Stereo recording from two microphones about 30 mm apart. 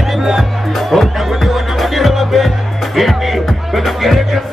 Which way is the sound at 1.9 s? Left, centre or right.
Centre.